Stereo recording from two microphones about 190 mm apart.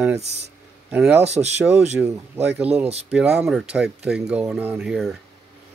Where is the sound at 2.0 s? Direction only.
10° right (ahead or behind).